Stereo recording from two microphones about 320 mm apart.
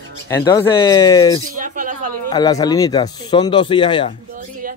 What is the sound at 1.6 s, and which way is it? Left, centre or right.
Speech, right.